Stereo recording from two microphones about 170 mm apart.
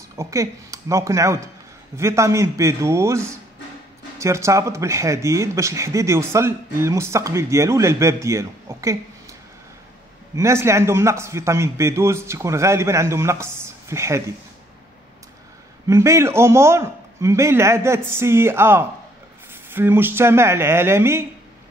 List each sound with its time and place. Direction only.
0.1 s speech: 20° right (ahead or behind)
10.3 s speech: 15° right (ahead or behind)
15.9 s speech: 15° right (ahead or behind)